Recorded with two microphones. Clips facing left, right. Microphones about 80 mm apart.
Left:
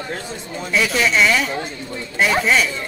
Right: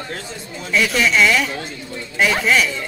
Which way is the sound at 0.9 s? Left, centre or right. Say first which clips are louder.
Right 1 dB; centre.